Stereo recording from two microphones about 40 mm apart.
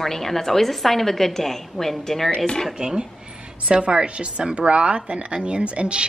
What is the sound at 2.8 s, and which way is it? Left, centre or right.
A woman's voice, right.